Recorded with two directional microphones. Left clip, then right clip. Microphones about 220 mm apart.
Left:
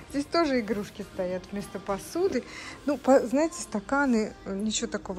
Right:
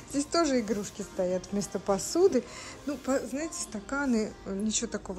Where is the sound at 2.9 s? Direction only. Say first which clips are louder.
Left 9 dB; 5° left (ahead or behind).